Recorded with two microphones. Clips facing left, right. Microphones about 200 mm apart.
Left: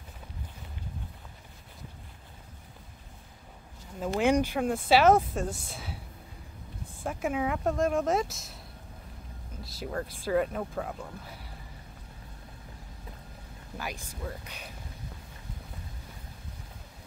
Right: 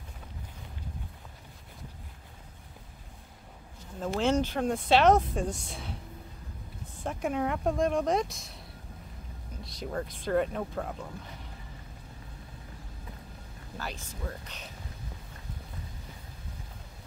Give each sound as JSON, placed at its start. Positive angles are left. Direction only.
{"t": 4.0, "sound": "speech", "side_deg": 15}
{"t": 7.0, "sound": "speech", "side_deg": 5}
{"t": 9.6, "sound": "speech", "side_deg": 0}
{"t": 13.7, "sound": "speech", "side_deg": 15}